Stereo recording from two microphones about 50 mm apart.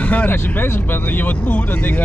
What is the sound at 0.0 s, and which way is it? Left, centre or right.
Speech, left.